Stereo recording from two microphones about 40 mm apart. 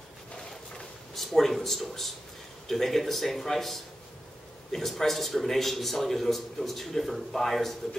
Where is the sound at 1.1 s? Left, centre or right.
Centre.